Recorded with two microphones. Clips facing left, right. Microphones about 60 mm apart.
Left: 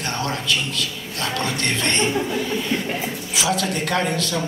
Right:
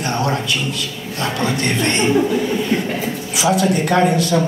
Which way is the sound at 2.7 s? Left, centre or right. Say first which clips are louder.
Right 5 dB; right.